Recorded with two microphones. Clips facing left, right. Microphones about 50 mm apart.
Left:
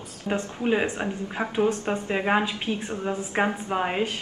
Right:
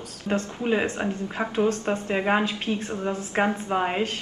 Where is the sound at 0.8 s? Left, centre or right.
Centre.